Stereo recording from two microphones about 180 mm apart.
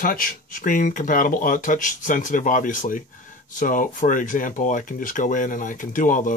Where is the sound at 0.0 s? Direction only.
50° left (ahead or behind).